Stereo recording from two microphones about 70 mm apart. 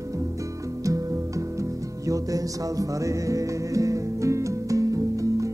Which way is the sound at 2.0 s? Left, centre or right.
Right.